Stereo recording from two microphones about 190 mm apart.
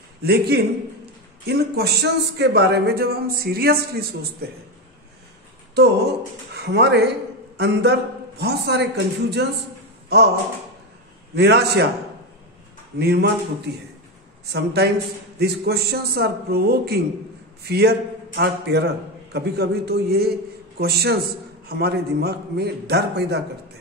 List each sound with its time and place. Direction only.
0.2 s a man's voice: 55° right (ahead or behind)
5.8 s a man's voice: 60° right (ahead or behind)
11.3 s a man's voice: 60° right (ahead or behind)
13.0 s a man's voice: 55° right (ahead or behind)